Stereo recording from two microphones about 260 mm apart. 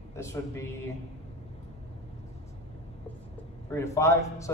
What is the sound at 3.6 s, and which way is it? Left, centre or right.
Speech, centre.